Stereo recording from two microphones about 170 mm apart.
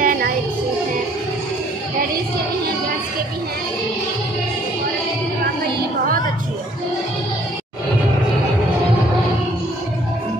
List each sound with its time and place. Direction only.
0.0 s music: 55° right (ahead or behind)